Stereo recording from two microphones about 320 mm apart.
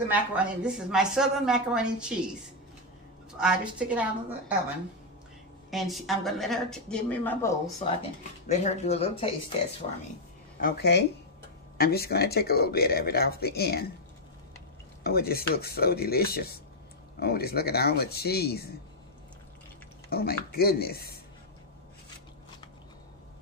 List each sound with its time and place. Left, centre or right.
0.1 s a woman's voice: centre
3.3 s a woman's voice: centre
5.7 s a woman's voice: centre; by 13.8 s left
15.0 s speech: left
20.1 s speech: left